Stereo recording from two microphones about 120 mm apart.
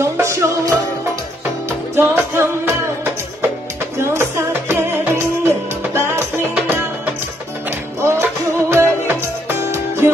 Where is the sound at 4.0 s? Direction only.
20° right (ahead or behind).